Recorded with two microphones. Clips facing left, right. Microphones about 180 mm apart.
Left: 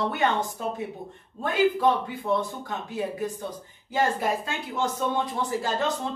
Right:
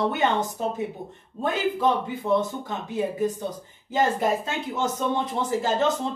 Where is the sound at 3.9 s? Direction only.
20° right (ahead or behind).